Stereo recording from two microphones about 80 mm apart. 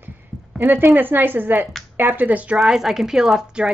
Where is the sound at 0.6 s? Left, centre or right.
Right.